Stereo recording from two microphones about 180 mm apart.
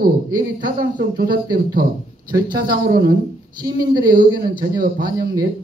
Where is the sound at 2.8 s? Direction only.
55° right (ahead or behind).